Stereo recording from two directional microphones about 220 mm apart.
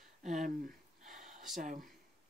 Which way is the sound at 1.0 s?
35° right (ahead or behind).